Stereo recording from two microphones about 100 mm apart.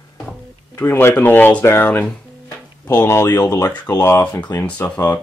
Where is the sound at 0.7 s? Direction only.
20° left (ahead or behind).